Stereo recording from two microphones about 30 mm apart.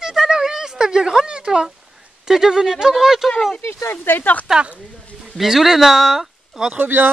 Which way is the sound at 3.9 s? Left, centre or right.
Left.